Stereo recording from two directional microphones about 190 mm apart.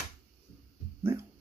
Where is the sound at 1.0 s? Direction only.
15° right (ahead or behind).